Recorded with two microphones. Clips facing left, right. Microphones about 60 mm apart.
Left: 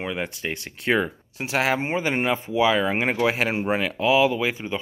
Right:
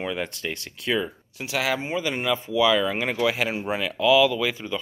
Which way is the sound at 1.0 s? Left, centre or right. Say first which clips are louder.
Left 3 dB; left.